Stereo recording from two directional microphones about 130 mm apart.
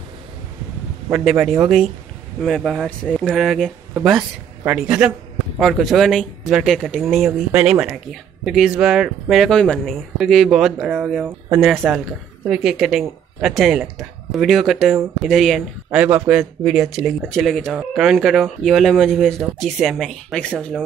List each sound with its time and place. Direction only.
1.1 s speech: 5° right (ahead or behind)
4.7 s speech: 5° right (ahead or behind)
11.2 s speech: 20° right (ahead or behind)
11.8 s speech: 5° right (ahead or behind)